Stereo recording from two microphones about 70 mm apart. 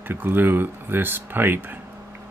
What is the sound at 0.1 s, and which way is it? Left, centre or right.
Speech, right.